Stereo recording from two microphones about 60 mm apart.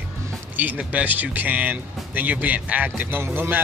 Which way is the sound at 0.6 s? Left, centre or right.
Right.